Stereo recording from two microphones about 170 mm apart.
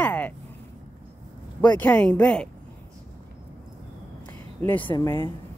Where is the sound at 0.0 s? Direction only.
10° left (ahead or behind).